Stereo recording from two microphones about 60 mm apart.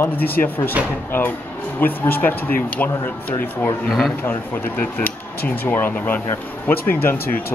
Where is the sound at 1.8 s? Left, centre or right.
Left.